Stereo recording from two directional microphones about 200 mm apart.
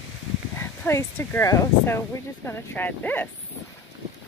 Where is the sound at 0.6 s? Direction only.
10° left (ahead or behind).